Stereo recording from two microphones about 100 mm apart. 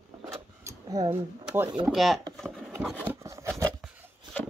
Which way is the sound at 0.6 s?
40° right (ahead or behind).